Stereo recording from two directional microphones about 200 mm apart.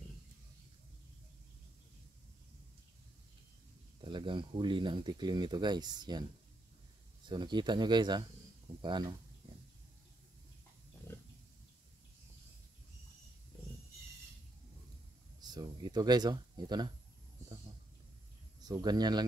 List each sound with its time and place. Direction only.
4.0 s speech: 25° right (ahead or behind)
7.2 s speech: 20° right (ahead or behind)
15.4 s speech: 20° right (ahead or behind)
18.6 s speech: 20° right (ahead or behind)